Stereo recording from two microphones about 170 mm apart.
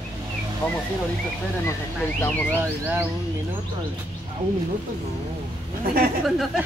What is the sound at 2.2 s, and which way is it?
Speech, 10° left (ahead or behind).